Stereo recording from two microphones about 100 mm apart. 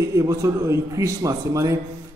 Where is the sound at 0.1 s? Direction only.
30° right (ahead or behind).